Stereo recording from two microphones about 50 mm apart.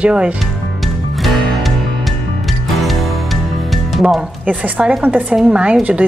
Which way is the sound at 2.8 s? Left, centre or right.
Centre.